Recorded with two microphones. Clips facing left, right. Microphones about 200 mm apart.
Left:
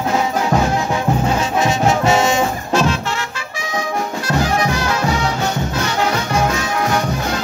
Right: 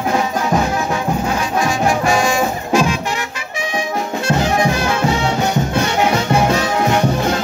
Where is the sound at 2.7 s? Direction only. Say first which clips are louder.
Right 2 dB; 10° right (ahead or behind).